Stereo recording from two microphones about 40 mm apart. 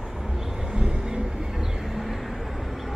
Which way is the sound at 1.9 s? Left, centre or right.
Centre.